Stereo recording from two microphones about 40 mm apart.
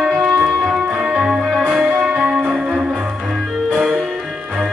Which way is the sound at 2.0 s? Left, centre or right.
Right.